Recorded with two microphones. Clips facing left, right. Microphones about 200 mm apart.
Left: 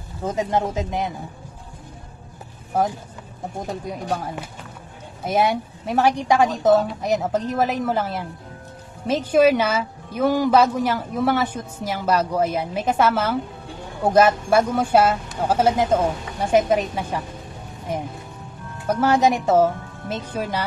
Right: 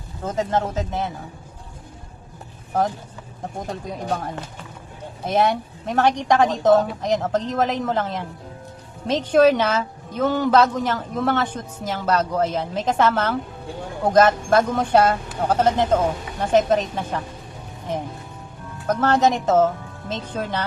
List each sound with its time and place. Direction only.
0.2 s a woman's voice: 10° left (ahead or behind)
5.2 s a woman's voice: 10° left (ahead or behind)